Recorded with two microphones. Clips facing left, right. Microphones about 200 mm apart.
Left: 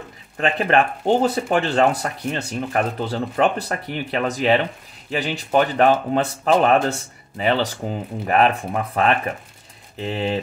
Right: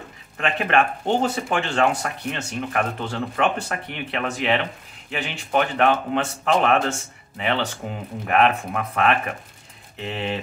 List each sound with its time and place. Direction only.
0.4 s speech: 35° left (ahead or behind)